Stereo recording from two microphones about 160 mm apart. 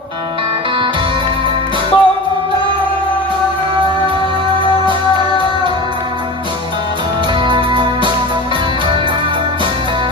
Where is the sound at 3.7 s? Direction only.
30° right (ahead or behind).